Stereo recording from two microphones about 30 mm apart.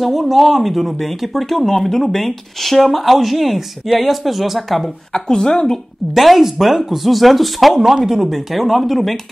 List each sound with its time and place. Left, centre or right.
0.0 s speech: centre
5.1 s speech: left
6.1 s speech: centre
7.8 s speech: centre